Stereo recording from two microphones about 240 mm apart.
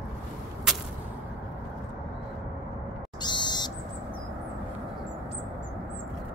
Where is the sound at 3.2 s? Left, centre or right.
Centre.